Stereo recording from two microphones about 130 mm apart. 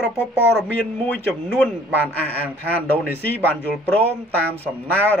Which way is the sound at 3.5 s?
10° left (ahead or behind).